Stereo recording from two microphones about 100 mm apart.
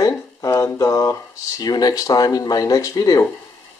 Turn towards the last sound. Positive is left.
turn(degrees=35)  # may be behind; listen again after turning